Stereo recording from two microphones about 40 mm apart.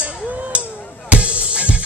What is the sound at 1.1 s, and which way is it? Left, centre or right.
Music, right.